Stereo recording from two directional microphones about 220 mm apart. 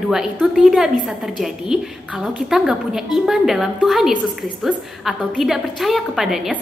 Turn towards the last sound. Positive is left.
turn(degrees=0)  # may be behind; listen again after turning